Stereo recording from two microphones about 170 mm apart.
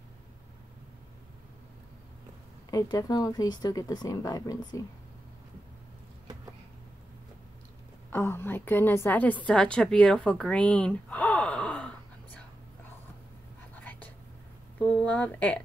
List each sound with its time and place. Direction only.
2.7 s speech: 20° left (ahead or behind)
8.1 s a woman's voice: 15° left (ahead or behind)
13.7 s a sound: 10° left (ahead or behind)
15.0 s speech: 10° left (ahead or behind)